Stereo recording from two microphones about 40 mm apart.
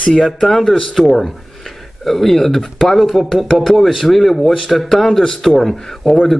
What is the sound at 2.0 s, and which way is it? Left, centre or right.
A man's voice, centre.